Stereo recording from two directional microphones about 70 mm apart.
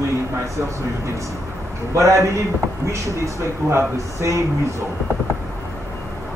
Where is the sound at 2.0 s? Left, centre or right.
Right.